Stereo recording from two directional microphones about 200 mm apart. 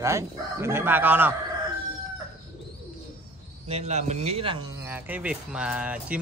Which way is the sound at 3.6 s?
35° right (ahead or behind).